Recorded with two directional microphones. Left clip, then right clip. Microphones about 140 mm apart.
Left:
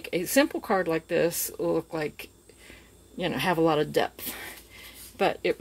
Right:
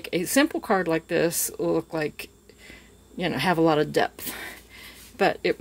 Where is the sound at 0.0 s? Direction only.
20° right (ahead or behind).